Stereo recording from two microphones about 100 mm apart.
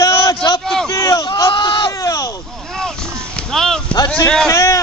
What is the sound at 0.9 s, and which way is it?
Speech, 40° left (ahead or behind).